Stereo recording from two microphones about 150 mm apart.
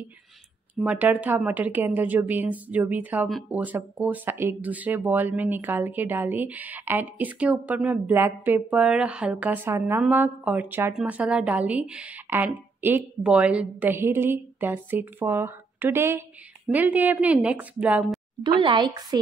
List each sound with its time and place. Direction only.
0.8 s speech: 10° right (ahead or behind)
18.4 s speech: 30° right (ahead or behind)